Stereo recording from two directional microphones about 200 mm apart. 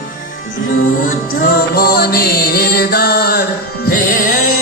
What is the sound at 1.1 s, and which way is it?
Music, 45° left (ahead or behind).